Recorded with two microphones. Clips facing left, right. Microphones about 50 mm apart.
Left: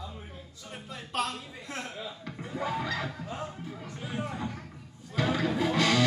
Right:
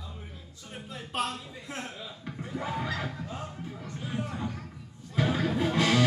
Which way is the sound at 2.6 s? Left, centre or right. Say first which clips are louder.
Left 1 dB; centre.